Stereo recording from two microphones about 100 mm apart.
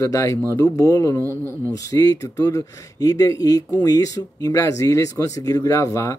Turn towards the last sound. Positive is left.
turn(degrees=30)  # may be behind; listen again after turning